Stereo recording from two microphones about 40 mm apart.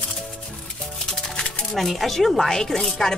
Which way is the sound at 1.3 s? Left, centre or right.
Left.